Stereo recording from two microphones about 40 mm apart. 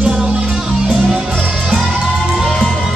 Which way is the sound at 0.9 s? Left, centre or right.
Centre.